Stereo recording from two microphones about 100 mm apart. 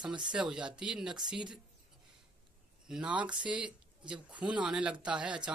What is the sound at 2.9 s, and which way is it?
Speech, 10° right (ahead or behind).